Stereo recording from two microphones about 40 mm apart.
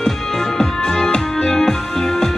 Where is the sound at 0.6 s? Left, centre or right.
Centre.